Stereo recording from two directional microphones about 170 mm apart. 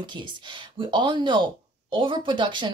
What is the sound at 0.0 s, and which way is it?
Speech, 25° right (ahead or behind).